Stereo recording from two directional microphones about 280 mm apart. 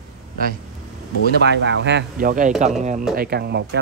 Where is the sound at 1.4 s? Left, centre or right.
Right.